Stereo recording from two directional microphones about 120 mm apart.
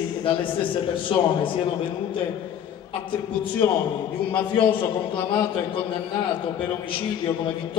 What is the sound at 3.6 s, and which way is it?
Speech, 20° left (ahead or behind).